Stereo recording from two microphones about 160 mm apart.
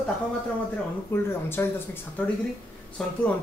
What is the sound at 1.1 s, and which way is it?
Speech, 15° left (ahead or behind).